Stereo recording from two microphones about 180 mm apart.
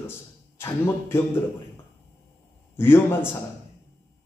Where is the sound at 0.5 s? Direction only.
15° left (ahead or behind).